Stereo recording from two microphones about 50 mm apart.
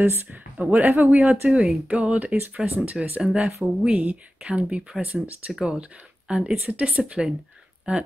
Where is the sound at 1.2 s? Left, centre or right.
Right.